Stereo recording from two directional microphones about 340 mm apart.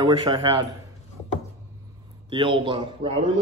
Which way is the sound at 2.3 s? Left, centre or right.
Centre.